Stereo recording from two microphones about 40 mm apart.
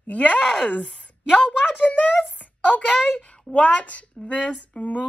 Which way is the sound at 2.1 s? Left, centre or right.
Centre.